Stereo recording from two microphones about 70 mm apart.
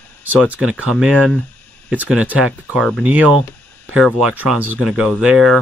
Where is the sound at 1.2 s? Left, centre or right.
Centre.